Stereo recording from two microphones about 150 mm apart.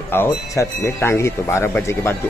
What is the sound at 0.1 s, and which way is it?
Speech, 15° left (ahead or behind).